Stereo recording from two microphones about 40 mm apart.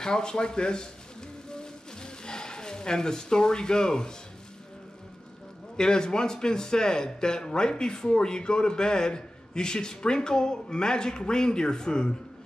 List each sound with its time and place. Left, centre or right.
0.0 s a man's voice: centre
1.5 s a sound: centre
5.8 s a man's voice: centre